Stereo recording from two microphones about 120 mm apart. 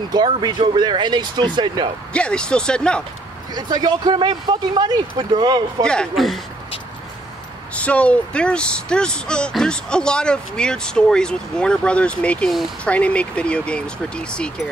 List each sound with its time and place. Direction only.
0.1 s speech: 35° right (ahead or behind)
2.1 s speech: 10° left (ahead or behind)
3.5 s speech: 35° right (ahead or behind)
5.9 s speech: 5° left (ahead or behind)
7.7 s speech: 10° left (ahead or behind)